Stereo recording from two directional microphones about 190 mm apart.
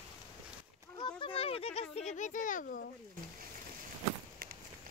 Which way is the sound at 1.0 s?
25° left (ahead or behind).